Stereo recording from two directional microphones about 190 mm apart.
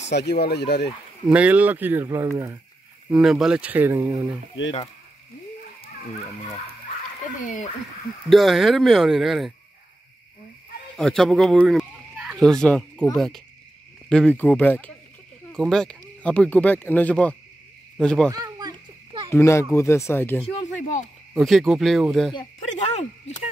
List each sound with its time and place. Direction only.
0.0 s speech: 65° left (ahead or behind)
1.2 s speech: 5° right (ahead or behind)
3.1 s speech: 5° right (ahead or behind)
5.8 s speech: 35° left (ahead or behind)
8.3 s speech: centre (ahead or behind)
11.0 s speech: centre (ahead or behind)
18.3 s a sound: 20° right (ahead or behind)
19.3 s speech: 15° left (ahead or behind)
21.3 s speech: centre (ahead or behind)
22.6 s speech: 40° left (ahead or behind)